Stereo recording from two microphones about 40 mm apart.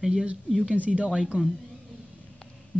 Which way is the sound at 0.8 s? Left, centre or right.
Right.